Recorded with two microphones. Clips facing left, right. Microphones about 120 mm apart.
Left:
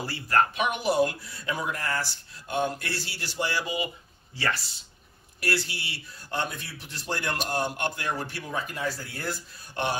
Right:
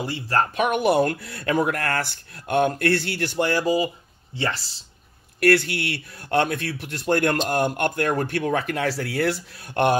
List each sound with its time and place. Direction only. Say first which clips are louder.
0.0 s speech: right 3 dB; 20° right (ahead or behind)
0.4 s speech: right 4 dB; 50° right (ahead or behind)
4.4 s speech: right 3 dB; 25° right (ahead or behind)
5.4 s speech: right 11 dB; 60° right (ahead or behind)